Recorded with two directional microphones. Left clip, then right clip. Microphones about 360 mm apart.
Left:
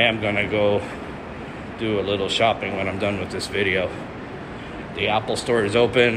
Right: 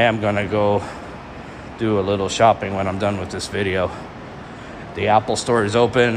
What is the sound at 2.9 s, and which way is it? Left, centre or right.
Speech, centre.